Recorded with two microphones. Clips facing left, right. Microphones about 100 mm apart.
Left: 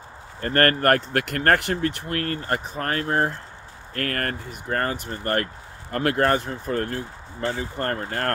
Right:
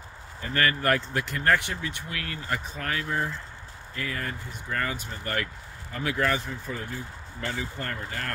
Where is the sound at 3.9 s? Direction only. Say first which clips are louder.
Left 6 dB; 65° left (ahead or behind).